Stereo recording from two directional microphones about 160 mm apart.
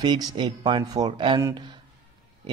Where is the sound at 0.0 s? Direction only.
25° right (ahead or behind).